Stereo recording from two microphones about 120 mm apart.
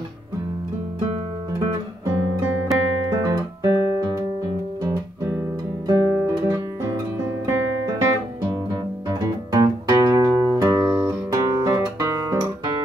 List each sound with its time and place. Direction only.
1.6 s music: 30° right (ahead or behind)
3.1 s guitar: 30° right (ahead or behind)
9.1 s music: 30° right (ahead or behind)
10.8 s music: 10° right (ahead or behind)
11.2 s guitar: 30° right (ahead or behind)